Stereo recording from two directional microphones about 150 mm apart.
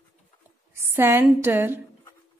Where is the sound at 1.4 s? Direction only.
15° right (ahead or behind).